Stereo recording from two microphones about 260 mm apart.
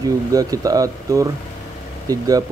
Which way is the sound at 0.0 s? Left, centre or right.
Centre.